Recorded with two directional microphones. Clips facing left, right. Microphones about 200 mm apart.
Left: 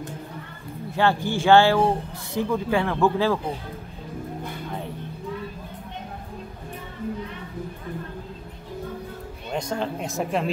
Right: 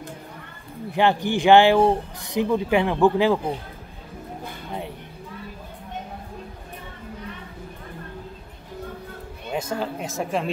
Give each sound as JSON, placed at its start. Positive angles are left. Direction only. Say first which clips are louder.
{"t": 0.9, "sound": "speech", "louder": "right 2 dB", "side_deg": -15}
{"t": 9.5, "sound": "speech", "louder": "even", "side_deg": -5}